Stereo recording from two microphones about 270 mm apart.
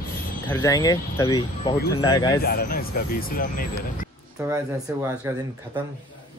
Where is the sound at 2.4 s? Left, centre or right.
Left.